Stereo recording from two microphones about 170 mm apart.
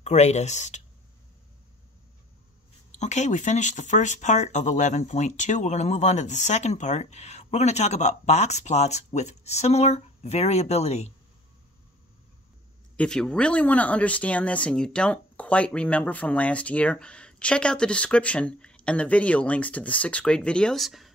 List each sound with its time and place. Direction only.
0.0 s speech: 40° left (ahead or behind)
2.9 s speech: 45° left (ahead or behind)
12.9 s speech: 5° left (ahead or behind)